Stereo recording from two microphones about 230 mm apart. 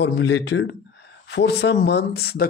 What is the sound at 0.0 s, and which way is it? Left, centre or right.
Speech, left.